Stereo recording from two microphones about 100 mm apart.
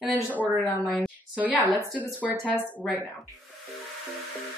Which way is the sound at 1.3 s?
15° right (ahead or behind).